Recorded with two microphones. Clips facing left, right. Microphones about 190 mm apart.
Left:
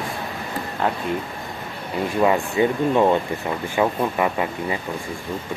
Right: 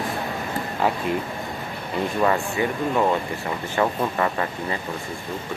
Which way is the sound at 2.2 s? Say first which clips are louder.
Left 4 dB; 15° left (ahead or behind).